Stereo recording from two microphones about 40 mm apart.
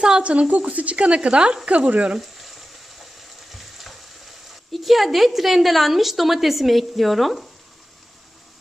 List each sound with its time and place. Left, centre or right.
0.2 s a woman's voice: right
2.1 s frying: centre